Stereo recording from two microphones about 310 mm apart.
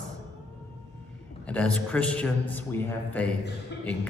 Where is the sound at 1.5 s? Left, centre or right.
Centre.